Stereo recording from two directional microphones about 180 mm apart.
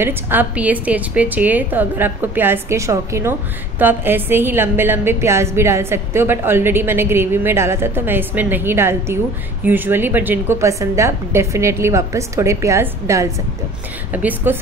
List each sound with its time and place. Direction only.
0.0 s a woman's voice: 10° right (ahead or behind)